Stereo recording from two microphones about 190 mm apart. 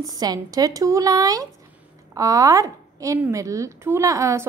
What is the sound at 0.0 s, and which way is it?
A woman's voice, 20° right (ahead or behind).